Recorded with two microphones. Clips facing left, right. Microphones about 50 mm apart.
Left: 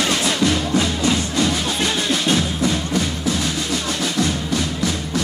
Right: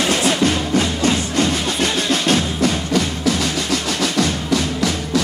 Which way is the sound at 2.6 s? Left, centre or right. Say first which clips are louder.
Right 2 dB; right.